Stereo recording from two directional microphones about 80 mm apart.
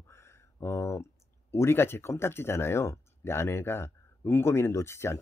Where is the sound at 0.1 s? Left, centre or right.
Left.